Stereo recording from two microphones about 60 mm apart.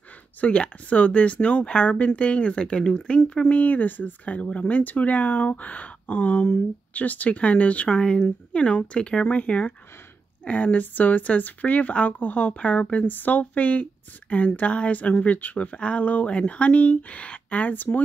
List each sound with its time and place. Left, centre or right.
0.4 s speech: left
3.4 s speech: left